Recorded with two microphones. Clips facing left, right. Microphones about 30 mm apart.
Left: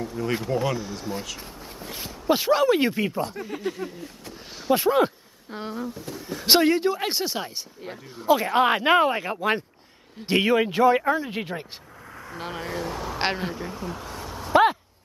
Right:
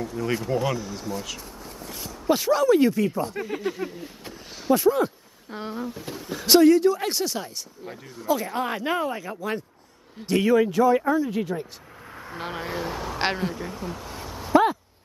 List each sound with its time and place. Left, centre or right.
0.0 s speech: centre
0.7 s speech: centre
1.8 s speech: left
3.4 s speech: centre
4.7 s speech: left
5.5 s speech: centre
5.9 s speech: centre
6.4 s speech: left
12.3 s speech: centre